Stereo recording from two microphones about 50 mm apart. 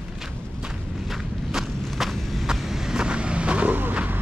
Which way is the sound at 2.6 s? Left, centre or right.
Centre.